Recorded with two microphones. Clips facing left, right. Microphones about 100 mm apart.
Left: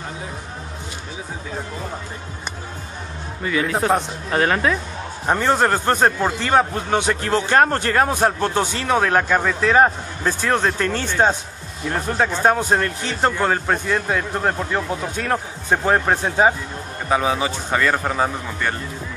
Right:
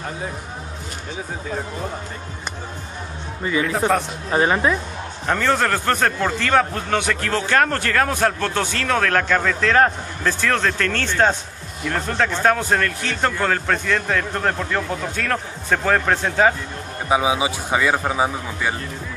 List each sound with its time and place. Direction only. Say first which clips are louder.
4.3 s a man's voice: right 1 dB; 10° right (ahead or behind)
5.2 s a man's voice: left 2 dB; 20° left (ahead or behind)
17.1 s a man's voice: right 1 dB; 10° right (ahead or behind)